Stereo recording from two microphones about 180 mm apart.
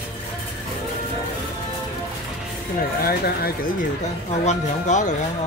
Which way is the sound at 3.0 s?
60° left (ahead or behind).